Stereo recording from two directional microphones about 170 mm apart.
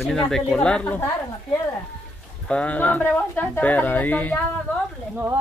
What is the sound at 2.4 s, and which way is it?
Speech, 5° left (ahead or behind).